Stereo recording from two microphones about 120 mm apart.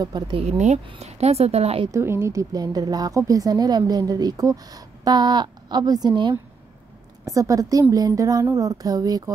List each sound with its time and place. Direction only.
0.0 s a woman's voice: 35° right (ahead or behind)
0.4 s a woman's voice: 70° right (ahead or behind)
1.9 s a woman's voice: 20° right (ahead or behind); by 6.3 s 40° right (ahead or behind)
7.2 s a woman's voice: 30° right (ahead or behind)